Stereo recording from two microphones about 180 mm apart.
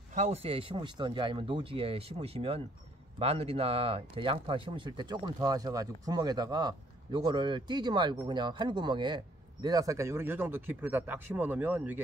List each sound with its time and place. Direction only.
0.1 s speech: 35° right (ahead or behind); by 12.0 s 10° right (ahead or behind)